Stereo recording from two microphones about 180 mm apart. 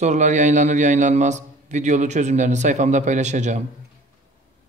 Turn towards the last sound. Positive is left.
turn(degrees=-40)  # may be behind; listen again after turning